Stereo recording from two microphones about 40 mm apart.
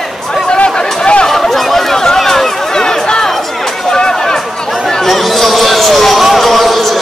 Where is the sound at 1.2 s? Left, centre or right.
Centre.